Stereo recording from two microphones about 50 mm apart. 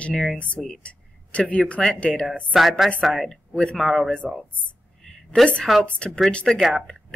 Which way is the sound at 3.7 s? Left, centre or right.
Centre.